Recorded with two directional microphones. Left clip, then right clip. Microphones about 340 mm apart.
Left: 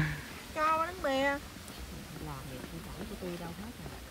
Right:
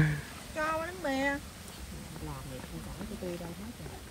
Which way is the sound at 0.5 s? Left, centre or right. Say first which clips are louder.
Left 3 dB; centre.